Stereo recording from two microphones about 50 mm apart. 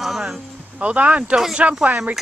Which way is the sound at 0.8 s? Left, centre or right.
Right.